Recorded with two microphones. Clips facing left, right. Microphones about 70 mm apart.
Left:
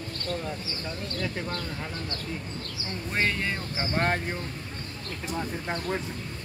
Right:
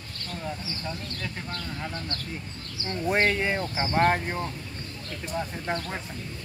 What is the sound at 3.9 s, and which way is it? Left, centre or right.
Speech, centre.